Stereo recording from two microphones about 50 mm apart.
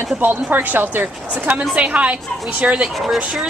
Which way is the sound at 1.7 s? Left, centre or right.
Right.